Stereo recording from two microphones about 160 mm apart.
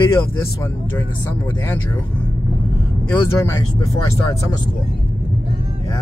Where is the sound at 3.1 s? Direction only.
15° left (ahead or behind).